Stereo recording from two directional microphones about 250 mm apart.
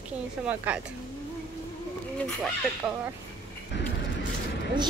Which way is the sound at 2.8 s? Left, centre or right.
Centre.